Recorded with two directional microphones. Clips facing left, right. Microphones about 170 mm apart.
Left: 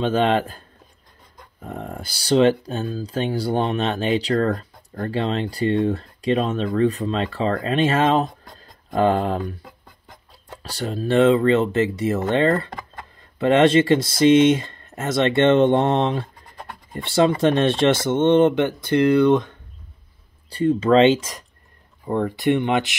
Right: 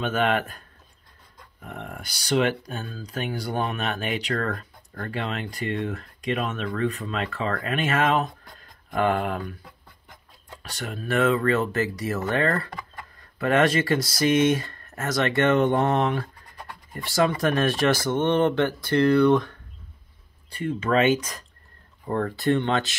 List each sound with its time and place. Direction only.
0.0 s speech: 30° left (ahead or behind)
9.4 s a sound: 40° left (ahead or behind)
10.6 s speech: 30° left (ahead or behind)
20.4 s speech: 35° left (ahead or behind); by 22.9 s 15° left (ahead or behind)